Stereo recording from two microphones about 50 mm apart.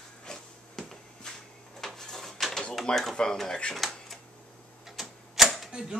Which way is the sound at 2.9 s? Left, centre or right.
Centre.